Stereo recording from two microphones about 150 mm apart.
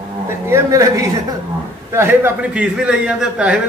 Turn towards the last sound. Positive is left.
turn(degrees=-5)  # may be behind; listen again after turning